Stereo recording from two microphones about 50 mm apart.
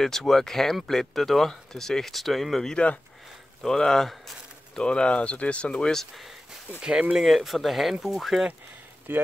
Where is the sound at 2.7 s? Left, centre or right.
Left.